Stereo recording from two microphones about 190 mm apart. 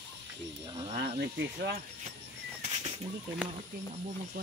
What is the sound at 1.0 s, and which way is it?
Speech, 65° right (ahead or behind).